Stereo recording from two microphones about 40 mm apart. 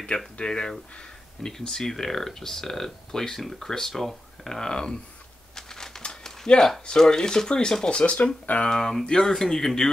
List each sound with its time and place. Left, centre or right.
0.4 s speech: centre
4.6 s speech: centre
5.6 s crumpling: centre
6.9 s speech: centre
8.0 s speech: left
8.6 s speech: centre